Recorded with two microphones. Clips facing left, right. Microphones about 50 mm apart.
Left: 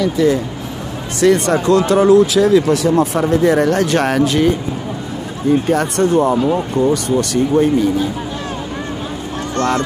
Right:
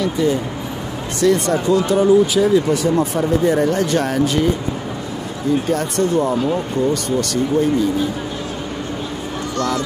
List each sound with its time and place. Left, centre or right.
1.2 s speech: left
5.7 s speech: left
9.6 s speech: left